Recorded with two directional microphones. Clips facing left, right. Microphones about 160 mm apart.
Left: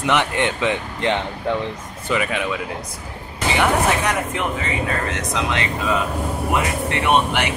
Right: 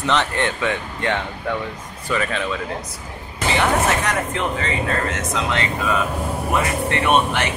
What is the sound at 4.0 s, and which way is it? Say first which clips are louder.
Speech: even; 10° left (ahead or behind).